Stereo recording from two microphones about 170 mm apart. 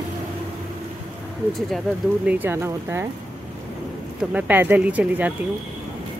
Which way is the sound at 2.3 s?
10° right (ahead or behind).